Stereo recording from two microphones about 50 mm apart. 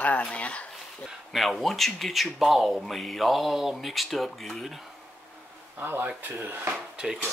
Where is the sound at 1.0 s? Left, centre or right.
Centre.